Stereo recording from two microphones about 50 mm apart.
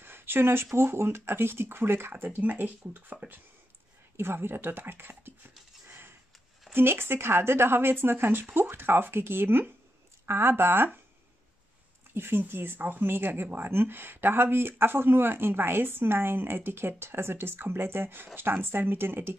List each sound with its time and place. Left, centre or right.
0.0 s a sound: right
0.7 s speech: right
2.2 s speech: right
4.2 s speech: right
5.9 s a sound: right
6.7 s speech: right
12.1 s speech: right